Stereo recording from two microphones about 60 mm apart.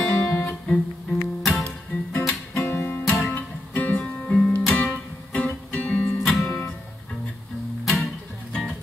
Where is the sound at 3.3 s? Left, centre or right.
Left.